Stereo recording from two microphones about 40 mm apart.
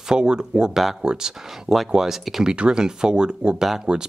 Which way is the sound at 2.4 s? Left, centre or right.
Right.